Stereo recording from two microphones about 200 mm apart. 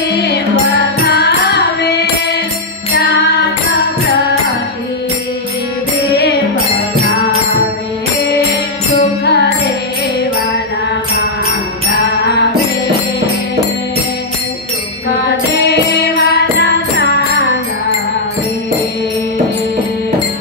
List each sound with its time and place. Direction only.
1.0 s music: 55° left (ahead or behind)
9.2 s music: 55° left (ahead or behind)
15.2 s music: 55° left (ahead or behind)